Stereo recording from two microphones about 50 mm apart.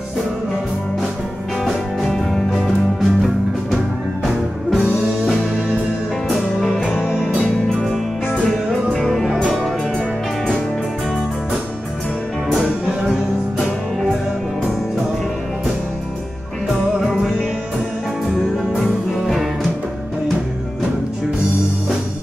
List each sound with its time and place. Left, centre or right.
1.6 s music: centre
4.7 s music: centre
6.2 s music: centre
7.8 s music: centre
8.5 s music: centre
9.9 s music: centre
12.5 s music: centre
19.1 s music: centre